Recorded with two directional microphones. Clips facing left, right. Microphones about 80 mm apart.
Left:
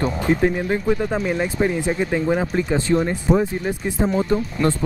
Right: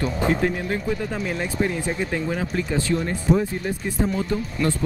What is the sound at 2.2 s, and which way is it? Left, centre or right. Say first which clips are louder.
Speech: left 5 dB; left.